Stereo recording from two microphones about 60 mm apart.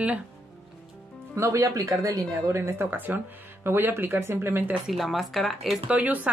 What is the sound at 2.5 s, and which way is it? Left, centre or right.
Speech, right.